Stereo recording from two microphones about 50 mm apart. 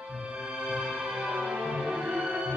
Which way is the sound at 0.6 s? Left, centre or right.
Right.